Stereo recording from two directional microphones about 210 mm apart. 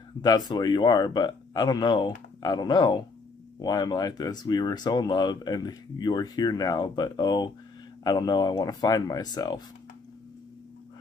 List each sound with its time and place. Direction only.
0.5 s speech: 20° left (ahead or behind)